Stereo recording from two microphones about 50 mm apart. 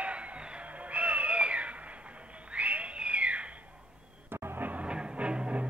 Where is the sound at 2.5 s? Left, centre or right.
Right.